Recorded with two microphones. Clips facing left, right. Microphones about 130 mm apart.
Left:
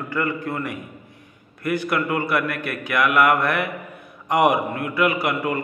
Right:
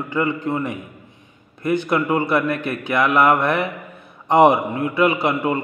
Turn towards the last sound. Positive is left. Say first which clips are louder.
# right 3 dB
turn(degrees=-25)  # may be behind; listen again after turning